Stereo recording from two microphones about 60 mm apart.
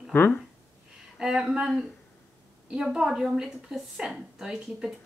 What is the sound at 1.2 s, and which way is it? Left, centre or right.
A woman's voice, centre.